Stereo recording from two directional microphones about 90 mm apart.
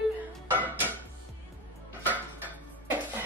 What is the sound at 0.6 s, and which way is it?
Speech, 20° right (ahead or behind).